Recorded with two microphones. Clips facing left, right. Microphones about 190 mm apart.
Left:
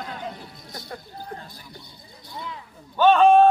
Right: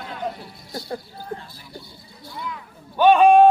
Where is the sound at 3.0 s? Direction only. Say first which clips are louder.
Right 2 dB; 15° right (ahead or behind).